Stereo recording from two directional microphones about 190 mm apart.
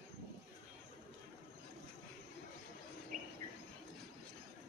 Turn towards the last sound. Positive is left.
turn(degrees=-45)  # may be behind; listen again after turning